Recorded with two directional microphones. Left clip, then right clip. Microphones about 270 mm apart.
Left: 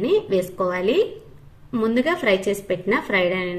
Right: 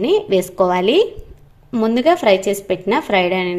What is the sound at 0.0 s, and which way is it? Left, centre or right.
A woman's voice, right.